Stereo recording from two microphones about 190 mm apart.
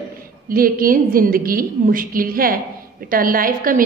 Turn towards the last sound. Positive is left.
turn(degrees=-45)  # may be behind; listen again after turning